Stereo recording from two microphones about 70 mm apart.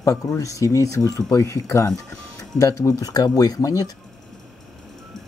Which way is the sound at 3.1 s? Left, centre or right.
Left.